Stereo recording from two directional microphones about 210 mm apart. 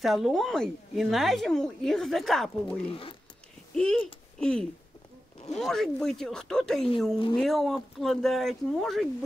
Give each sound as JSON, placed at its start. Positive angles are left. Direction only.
{"t": 0.0, "sound": "speech", "side_deg": 0}
{"t": 2.9, "sound": "speech", "side_deg": 25}
{"t": 3.7, "sound": "speech", "side_deg": 5}